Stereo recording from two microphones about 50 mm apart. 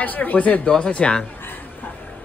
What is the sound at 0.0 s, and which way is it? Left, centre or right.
Speech, left.